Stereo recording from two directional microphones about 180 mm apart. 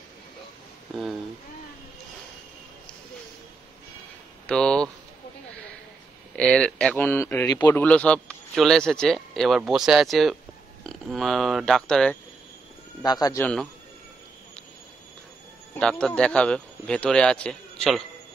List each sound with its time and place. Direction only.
4.5 s a sound: 5° left (ahead or behind)
6.3 s speech: 5° left (ahead or behind)
13.0 s a man's voice: 20° left (ahead or behind)
13.4 s speech: 5° left (ahead or behind)
15.7 s speech: 5° left (ahead or behind)